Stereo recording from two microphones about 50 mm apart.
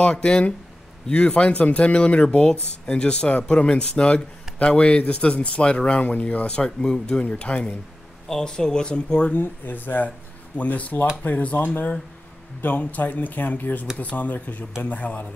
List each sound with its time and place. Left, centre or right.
0.0 s speech: centre
2.2 s speech: centre; by 6.4 s left
6.4 s speech: centre
8.3 s speech: centre
9.3 s speech: left